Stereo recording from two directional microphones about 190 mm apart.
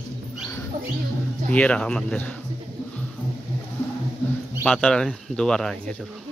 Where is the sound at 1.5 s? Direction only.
5° left (ahead or behind).